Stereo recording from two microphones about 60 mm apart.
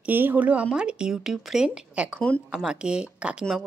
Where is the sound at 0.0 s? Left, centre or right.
Right; by 1.7 s centre.